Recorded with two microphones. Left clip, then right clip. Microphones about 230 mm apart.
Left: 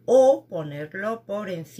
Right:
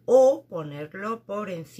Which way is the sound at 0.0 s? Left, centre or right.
Centre.